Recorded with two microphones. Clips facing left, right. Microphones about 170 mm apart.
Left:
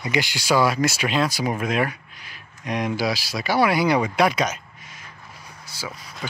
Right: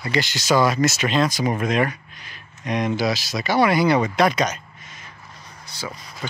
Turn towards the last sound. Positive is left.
turn(degrees=5)  # may be behind; listen again after turning